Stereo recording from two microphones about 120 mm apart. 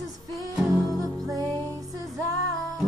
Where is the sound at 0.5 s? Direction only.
Centre (ahead or behind).